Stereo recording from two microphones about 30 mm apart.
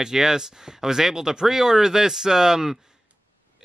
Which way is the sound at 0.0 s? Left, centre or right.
Centre.